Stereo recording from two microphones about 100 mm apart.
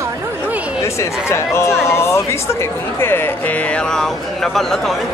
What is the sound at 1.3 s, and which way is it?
Speech, 25° left (ahead or behind).